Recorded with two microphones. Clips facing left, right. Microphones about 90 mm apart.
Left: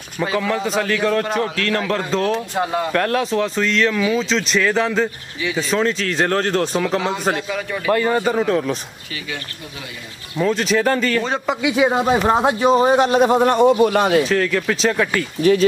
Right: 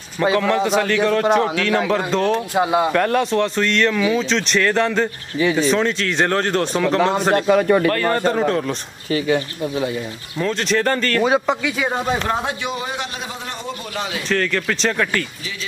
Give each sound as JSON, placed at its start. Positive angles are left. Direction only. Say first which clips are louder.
{"t": 0.2, "sound": "a man's voice", "louder": "right 3 dB", "side_deg": 0}
{"t": 7.3, "sound": "a man's voice", "louder": "right 10 dB", "side_deg": -50}
{"t": 7.9, "sound": "a man's voice", "louder": "left 1 dB", "side_deg": 10}
{"t": 9.1, "sound": "speech", "louder": "right 12 dB", "side_deg": -35}
{"t": 10.3, "sound": "a man's voice", "louder": "left 2 dB", "side_deg": 5}
{"t": 11.2, "sound": "speech", "louder": "right 4 dB", "side_deg": -5}
{"t": 11.6, "sound": "speech", "louder": "left 5 dB", "side_deg": 15}
{"t": 12.6, "sound": "a man's voice", "louder": "left 12 dB", "side_deg": 40}
{"t": 14.3, "sound": "a man's voice", "louder": "left 2 dB", "side_deg": 5}